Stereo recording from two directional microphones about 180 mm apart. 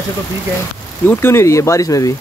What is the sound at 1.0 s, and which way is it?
Speech, 15° left (ahead or behind).